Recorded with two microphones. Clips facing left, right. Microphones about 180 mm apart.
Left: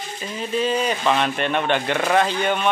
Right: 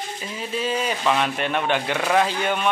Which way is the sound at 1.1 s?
5° right (ahead or behind).